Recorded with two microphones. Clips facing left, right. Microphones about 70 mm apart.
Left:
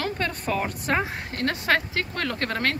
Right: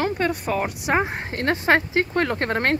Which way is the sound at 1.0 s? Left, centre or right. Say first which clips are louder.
Right 3 dB; right.